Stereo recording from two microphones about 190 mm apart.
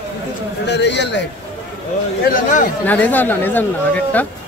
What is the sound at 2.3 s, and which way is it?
Speech, 45° left (ahead or behind).